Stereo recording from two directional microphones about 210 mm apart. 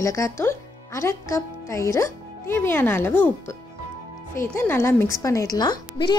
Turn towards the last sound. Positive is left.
turn(degrees=20)  # may be behind; listen again after turning